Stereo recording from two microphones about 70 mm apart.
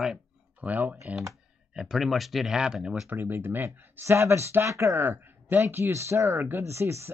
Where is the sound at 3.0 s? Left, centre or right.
Right.